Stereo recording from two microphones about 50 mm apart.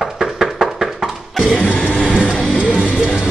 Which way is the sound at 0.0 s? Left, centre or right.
Centre.